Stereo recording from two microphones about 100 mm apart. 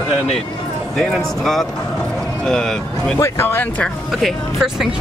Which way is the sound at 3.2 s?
25° left (ahead or behind).